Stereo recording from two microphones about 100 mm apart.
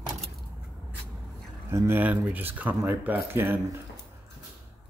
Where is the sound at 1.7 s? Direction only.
25° right (ahead or behind).